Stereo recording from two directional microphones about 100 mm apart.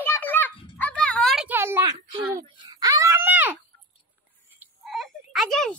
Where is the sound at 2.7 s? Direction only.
40° right (ahead or behind); by 3.5 s 20° right (ahead or behind).